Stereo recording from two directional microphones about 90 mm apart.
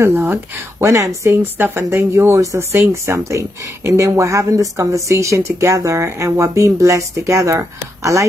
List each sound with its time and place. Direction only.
0.0 s speech: 25° right (ahead or behind)
1.4 s speech: 25° right (ahead or behind)